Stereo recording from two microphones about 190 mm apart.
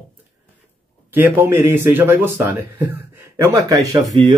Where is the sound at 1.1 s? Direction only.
10° right (ahead or behind).